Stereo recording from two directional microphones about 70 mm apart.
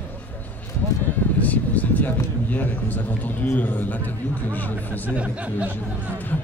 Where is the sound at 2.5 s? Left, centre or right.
Left.